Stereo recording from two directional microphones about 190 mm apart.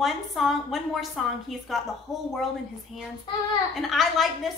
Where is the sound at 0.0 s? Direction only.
Centre (ahead or behind).